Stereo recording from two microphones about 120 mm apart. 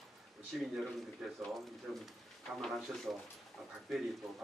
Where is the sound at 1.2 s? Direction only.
Centre (ahead or behind).